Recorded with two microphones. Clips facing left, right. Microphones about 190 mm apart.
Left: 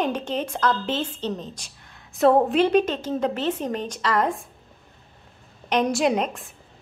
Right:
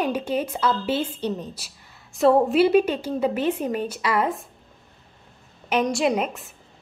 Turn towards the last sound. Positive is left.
turn(degrees=-5)  # may be behind; listen again after turning